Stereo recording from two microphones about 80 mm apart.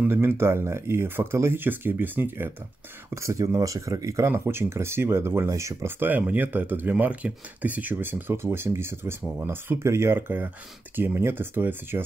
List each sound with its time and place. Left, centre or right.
0.1 s speech: right
3.2 s speech: right
4.3 s speech: right